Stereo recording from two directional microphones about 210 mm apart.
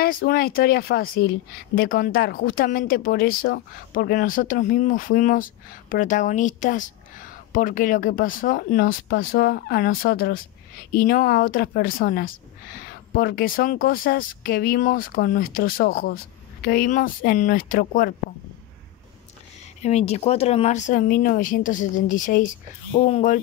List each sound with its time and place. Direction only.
0.0 s speech: 45° left (ahead or behind)
19.8 s speech: 30° left (ahead or behind)